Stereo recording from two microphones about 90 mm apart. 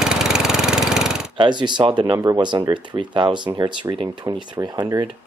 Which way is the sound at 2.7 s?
65° right (ahead or behind).